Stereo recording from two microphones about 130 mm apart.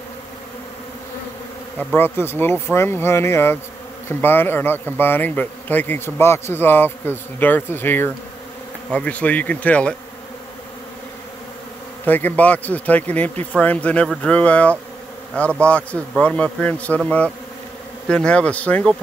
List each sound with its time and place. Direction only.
2.0 s speech: 15° left (ahead or behind)
12.1 s speech: 15° left (ahead or behind)